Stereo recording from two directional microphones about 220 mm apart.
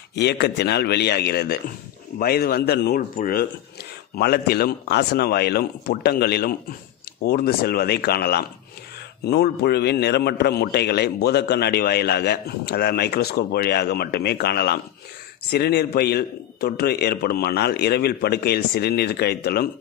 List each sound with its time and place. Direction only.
0.1 s a man's voice: 50° left (ahead or behind)